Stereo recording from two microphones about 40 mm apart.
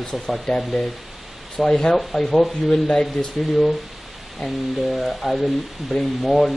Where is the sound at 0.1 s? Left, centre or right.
Centre.